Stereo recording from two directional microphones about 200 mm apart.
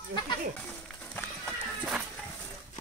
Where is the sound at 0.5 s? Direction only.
5° left (ahead or behind).